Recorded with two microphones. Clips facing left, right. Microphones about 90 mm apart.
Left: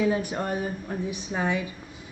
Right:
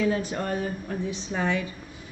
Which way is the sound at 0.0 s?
15° left (ahead or behind).